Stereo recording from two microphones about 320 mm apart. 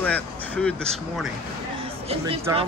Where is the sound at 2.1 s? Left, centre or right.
Centre.